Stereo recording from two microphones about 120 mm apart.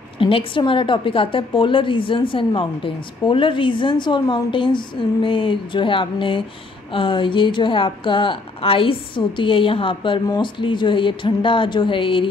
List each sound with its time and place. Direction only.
0.2 s a woman's voice: 45° left (ahead or behind)